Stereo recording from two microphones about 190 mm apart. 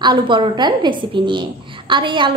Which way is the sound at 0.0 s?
25° right (ahead or behind).